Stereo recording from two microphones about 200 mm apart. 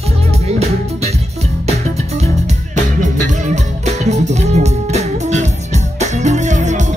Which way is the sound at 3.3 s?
35° right (ahead or behind).